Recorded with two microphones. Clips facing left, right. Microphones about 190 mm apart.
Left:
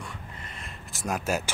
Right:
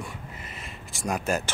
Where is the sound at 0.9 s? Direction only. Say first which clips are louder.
Right 1 dB; centre (ahead or behind).